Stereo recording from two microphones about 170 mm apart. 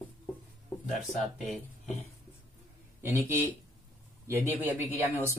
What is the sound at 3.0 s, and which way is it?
Speech, 15° right (ahead or behind).